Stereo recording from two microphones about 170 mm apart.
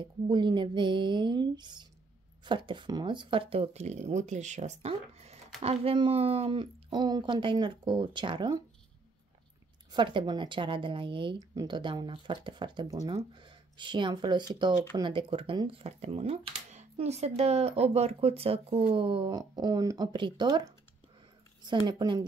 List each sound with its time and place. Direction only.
0.0 s a woman's voice: 25° right (ahead or behind)
9.9 s a woman's voice: 30° right (ahead or behind)